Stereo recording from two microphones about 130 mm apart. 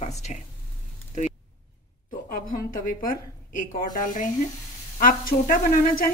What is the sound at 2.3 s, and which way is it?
A woman's voice, 90° left.